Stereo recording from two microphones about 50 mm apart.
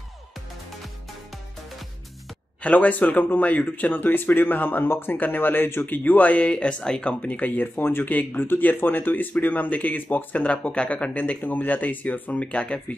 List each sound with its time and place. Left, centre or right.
2.6 s speech: left
6.5 s speech: centre
7.2 s speech: left